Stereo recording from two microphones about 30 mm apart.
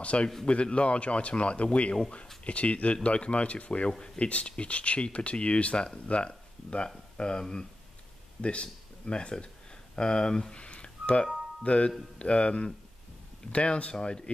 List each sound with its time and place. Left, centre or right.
0.0 s speech: left
8.4 s speech: left
10.5 s a sound: left
11.6 s speech: left
13.9 s speech: left